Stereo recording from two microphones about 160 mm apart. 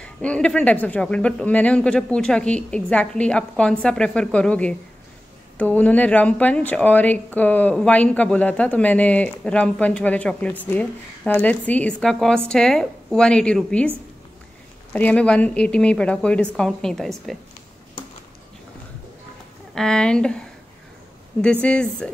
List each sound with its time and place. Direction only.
0.0 s a woman's voice: 5° left (ahead or behind)
14.9 s a woman's voice: 10° left (ahead or behind)
19.7 s a woman's voice: 5° left (ahead or behind)